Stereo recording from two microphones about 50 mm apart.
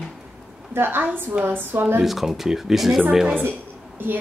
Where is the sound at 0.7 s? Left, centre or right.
Right.